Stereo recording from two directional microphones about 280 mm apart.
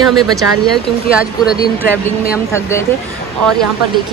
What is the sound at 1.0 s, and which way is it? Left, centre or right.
Speech, left.